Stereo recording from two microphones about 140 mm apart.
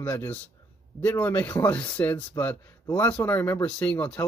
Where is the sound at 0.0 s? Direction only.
15° left (ahead or behind).